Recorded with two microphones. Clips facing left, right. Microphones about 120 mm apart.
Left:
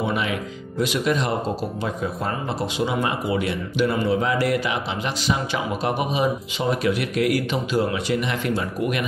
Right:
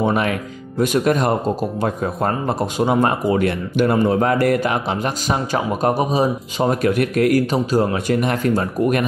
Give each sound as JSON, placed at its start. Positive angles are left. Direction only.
{"t": 0.0, "sound": "speech", "side_deg": -50}